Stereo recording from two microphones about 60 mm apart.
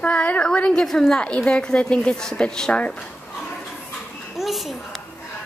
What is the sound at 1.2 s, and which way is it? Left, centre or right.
Speech, centre.